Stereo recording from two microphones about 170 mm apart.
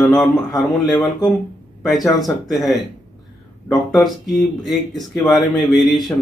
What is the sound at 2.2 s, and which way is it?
Speech, centre (ahead or behind).